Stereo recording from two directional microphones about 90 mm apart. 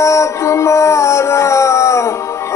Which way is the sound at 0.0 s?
35° left (ahead or behind).